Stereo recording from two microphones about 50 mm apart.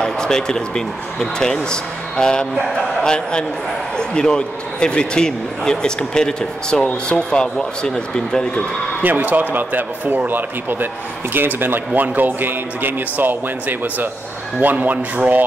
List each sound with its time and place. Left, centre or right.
0.0 s a man's voice: centre
9.0 s speech: right